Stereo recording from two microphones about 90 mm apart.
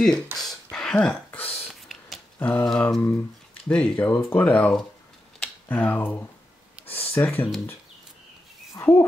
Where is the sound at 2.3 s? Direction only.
20° left (ahead or behind).